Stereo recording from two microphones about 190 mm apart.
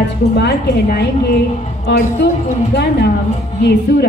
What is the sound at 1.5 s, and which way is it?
Speech, 35° left (ahead or behind).